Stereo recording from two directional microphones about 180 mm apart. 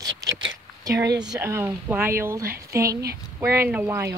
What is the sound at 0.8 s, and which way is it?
Speech, 20° right (ahead or behind).